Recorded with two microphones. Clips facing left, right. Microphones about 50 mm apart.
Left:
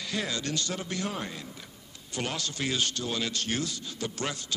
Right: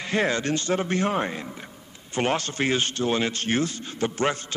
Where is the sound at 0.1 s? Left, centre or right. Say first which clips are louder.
Right 9 dB; right.